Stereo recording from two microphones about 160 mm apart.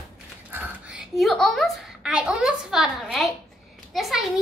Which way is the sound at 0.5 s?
10° right (ahead or behind).